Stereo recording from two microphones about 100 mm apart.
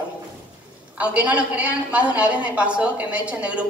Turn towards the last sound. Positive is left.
turn(degrees=-10)  # may be behind; listen again after turning